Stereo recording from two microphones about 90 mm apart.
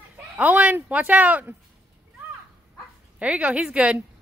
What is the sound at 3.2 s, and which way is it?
Speech, 15° right (ahead or behind).